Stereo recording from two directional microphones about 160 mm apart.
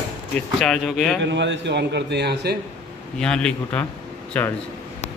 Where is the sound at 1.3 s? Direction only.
90° right.